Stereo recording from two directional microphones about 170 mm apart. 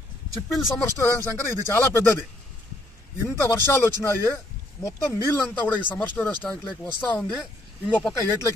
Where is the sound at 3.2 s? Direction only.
15° left (ahead or behind).